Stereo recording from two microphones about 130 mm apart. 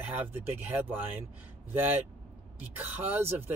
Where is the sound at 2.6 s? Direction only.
15° right (ahead or behind).